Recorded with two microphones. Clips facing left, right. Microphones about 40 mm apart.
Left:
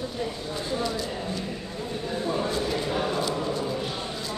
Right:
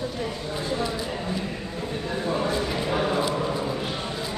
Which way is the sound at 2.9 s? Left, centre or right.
Right.